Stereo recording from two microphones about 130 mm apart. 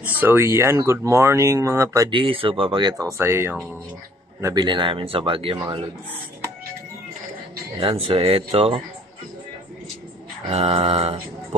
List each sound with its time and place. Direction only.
0.0 s speech: 15° right (ahead or behind)
2.0 s speech: 40° right (ahead or behind)
3.1 s speech: 20° right (ahead or behind)
4.6 s speech: 35° right (ahead or behind)
7.7 s speech: 45° right (ahead or behind)
10.5 s speech: 50° right (ahead or behind)